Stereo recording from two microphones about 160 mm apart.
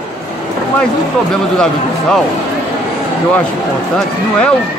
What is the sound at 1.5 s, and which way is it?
Speech, 5° left (ahead or behind).